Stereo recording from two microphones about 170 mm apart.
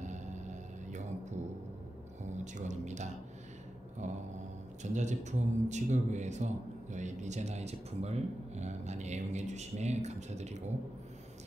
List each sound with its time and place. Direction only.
0.0 s music: 45° right (ahead or behind)
2.3 s a man's voice: 45° right (ahead or behind)